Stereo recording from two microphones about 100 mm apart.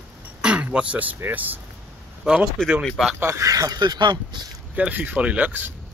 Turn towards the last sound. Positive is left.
turn(degrees=-20)  # may be behind; listen again after turning